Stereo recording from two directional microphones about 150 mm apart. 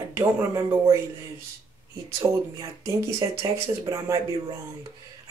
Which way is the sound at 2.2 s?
20° right (ahead or behind).